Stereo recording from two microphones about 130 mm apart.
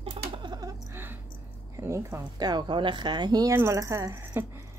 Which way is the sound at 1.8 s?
20° right (ahead or behind).